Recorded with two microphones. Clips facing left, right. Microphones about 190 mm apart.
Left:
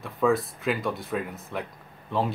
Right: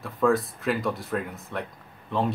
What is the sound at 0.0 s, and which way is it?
Speech, centre (ahead or behind).